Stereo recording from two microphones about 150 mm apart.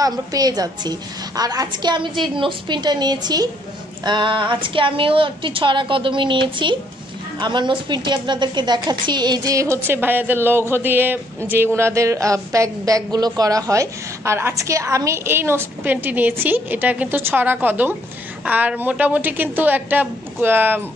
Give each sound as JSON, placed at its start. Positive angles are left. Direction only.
{"t": 0.0, "sound": "a woman's voice", "side_deg": -25}